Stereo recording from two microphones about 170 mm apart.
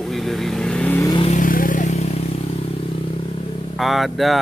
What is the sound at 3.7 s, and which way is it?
Speech, centre (ahead or behind).